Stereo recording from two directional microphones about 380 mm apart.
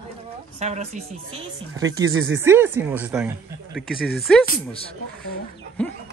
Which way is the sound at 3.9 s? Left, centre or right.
Left.